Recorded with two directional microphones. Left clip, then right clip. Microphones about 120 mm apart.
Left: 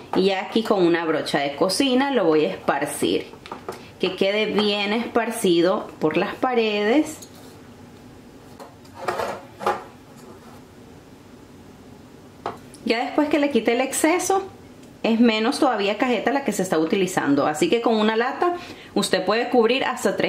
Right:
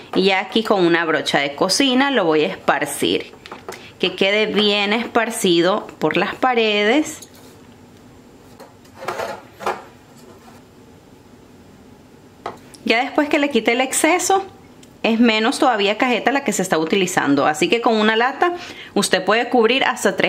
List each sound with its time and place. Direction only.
0.1 s a woman's voice: 25° right (ahead or behind)
12.8 s a woman's voice: 25° right (ahead or behind)